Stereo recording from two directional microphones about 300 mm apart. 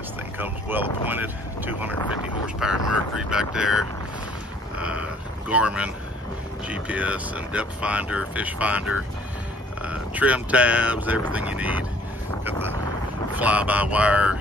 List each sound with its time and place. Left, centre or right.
0.4 s speech: centre
5.5 s speech: centre
13.4 s speech: centre